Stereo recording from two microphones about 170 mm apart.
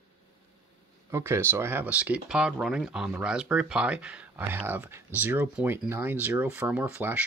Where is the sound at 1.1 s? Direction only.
15° right (ahead or behind).